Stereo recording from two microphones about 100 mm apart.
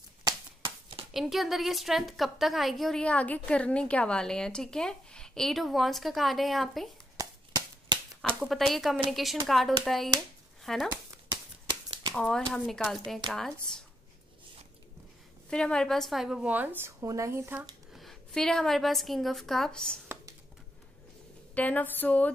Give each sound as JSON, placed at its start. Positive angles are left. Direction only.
{"t": 0.2, "sound": "a sound", "side_deg": -50}
{"t": 1.1, "sound": "a woman's voice", "side_deg": 0}
{"t": 7.2, "sound": "a sound", "side_deg": -40}
{"t": 8.2, "sound": "a woman's voice", "side_deg": 0}
{"t": 11.6, "sound": "a sound", "side_deg": -45}
{"t": 12.1, "sound": "a woman's voice", "side_deg": 10}
{"t": 15.5, "sound": "a woman's voice", "side_deg": 5}
{"t": 16.4, "sound": "speech", "side_deg": -20}
{"t": 17.0, "sound": "speech", "side_deg": -30}
{"t": 17.9, "sound": "a woman's voice", "side_deg": 5}
{"t": 21.5, "sound": "speech", "side_deg": 15}